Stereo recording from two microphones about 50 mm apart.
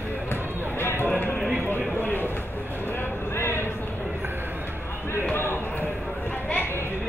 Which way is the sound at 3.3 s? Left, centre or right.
Left.